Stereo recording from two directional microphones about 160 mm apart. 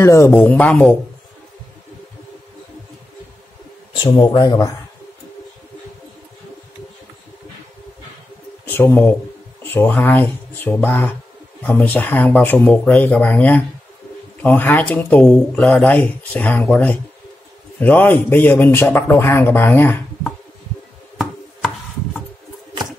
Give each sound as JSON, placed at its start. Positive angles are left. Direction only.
{"t": 0.0, "sound": "speech", "side_deg": 20}
{"t": 3.9, "sound": "speech", "side_deg": 30}
{"t": 8.6, "sound": "speech", "side_deg": 15}